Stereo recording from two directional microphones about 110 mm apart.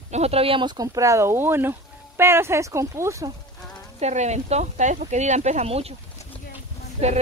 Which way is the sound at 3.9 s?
90° right.